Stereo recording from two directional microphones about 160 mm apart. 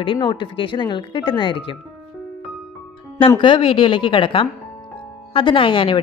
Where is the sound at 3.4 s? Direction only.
35° left (ahead or behind).